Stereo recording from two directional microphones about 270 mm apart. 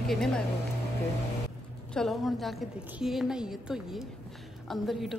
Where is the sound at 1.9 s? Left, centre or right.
Centre.